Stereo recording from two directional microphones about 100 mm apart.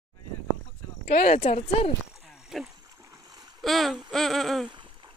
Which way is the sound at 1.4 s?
75° left (ahead or behind).